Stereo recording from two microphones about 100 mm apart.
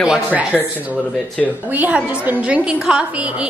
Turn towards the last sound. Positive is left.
turn(degrees=-10)  # may be behind; listen again after turning